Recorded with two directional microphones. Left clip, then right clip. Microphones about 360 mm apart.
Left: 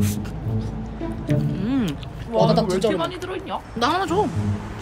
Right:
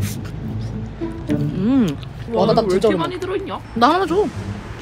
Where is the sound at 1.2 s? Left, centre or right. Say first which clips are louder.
Right 5 dB; centre.